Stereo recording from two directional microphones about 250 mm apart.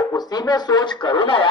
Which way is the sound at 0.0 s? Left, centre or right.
Centre.